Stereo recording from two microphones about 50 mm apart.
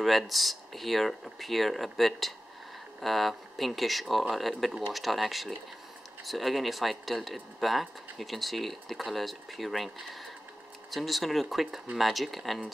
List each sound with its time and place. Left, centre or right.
0.0 s speech: centre